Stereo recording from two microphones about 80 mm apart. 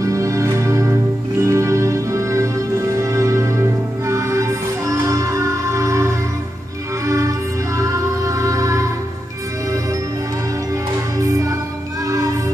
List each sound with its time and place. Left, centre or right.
0.0 s music: right